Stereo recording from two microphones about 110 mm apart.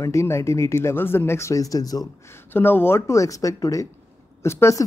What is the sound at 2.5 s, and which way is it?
Speech, 20° left (ahead or behind).